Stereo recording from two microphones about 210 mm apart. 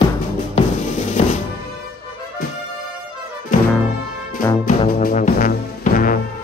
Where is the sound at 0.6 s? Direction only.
35° left (ahead or behind).